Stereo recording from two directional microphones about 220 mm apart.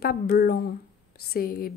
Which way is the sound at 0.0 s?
45° left (ahead or behind).